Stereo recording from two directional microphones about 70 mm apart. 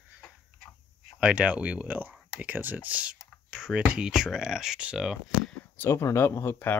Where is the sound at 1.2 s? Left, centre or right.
Centre.